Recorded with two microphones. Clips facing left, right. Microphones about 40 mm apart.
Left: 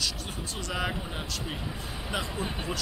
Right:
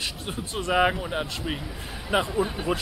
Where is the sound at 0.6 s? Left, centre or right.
Right.